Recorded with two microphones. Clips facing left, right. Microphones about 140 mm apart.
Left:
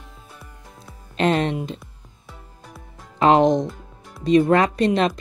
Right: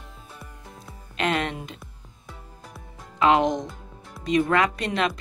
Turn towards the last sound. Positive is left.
turn(degrees=35)  # may be behind; listen again after turning